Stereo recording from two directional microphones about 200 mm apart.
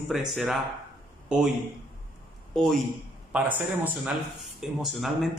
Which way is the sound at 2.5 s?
Centre (ahead or behind).